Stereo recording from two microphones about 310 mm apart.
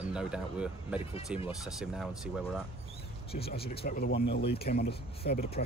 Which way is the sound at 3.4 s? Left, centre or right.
Left.